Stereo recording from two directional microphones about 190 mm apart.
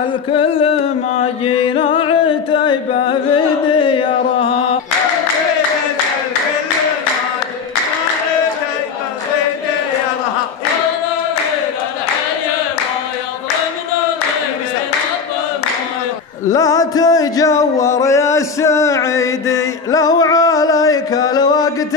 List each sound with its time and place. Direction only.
0.3 s music: 30° left (ahead or behind)
16.4 s music: 20° left (ahead or behind)